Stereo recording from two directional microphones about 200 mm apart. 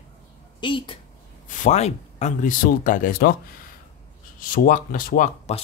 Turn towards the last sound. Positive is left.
turn(degrees=30)  # may be behind; listen again after turning